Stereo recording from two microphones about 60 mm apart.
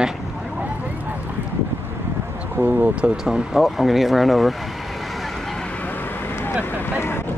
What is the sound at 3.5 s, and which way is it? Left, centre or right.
Speech, centre.